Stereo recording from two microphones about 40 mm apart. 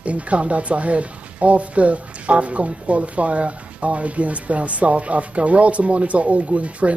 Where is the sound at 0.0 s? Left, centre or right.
Right.